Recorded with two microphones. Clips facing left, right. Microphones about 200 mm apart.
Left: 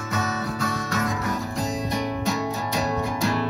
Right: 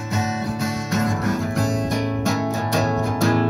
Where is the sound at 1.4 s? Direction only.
80° right.